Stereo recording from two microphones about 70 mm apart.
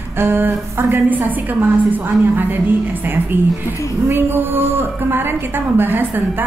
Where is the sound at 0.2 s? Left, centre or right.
Right.